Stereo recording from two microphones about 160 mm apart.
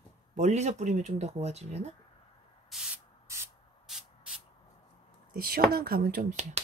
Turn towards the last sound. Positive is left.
turn(degrees=-45)  # may be behind; listen again after turning